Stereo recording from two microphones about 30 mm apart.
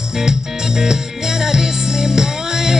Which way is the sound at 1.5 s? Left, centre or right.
Centre.